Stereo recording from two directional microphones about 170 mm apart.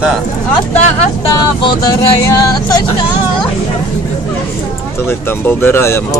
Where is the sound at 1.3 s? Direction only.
25° left (ahead or behind).